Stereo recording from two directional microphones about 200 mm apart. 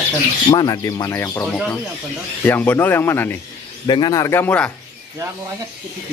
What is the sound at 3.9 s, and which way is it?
Speech, 20° left (ahead or behind).